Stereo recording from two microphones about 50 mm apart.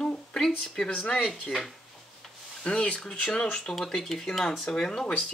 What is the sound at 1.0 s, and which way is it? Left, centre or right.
Speech, left.